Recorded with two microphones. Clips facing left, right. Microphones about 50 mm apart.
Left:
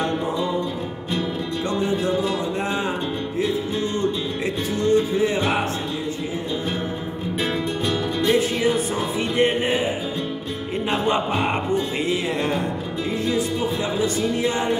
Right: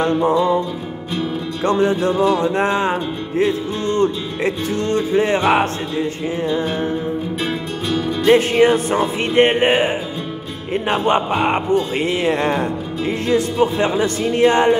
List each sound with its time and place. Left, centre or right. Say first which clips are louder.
0.0 s music: right 7 dB; right
1.6 s music: right 8 dB; right
8.3 s music: right 8 dB; right
10.7 s music: right 5 dB; right